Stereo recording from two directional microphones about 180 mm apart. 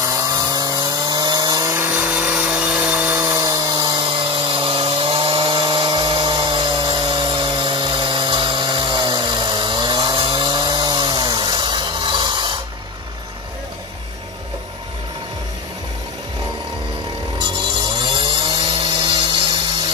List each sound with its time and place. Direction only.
0.0 s chainsaw: 20° right (ahead or behind)
17.9 s chainsaw: 25° right (ahead or behind)